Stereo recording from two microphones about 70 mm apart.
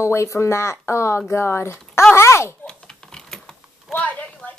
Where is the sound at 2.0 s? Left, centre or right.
Left.